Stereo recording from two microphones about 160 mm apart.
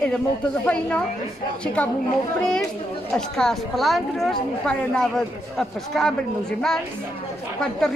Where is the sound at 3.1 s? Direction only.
5° left (ahead or behind).